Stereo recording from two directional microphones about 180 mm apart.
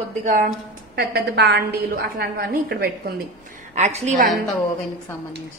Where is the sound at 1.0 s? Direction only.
60° right (ahead or behind).